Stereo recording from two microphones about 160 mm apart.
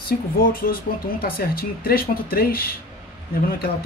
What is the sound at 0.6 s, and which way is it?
Speech, 70° left (ahead or behind).